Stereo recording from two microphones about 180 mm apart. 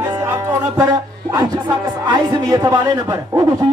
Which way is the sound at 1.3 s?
25° right (ahead or behind).